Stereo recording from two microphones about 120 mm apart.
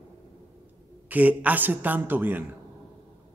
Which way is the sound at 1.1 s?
15° right (ahead or behind).